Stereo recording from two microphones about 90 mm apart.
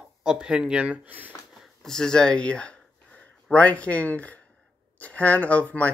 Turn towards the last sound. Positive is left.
turn(degrees=15)  # may be behind; listen again after turning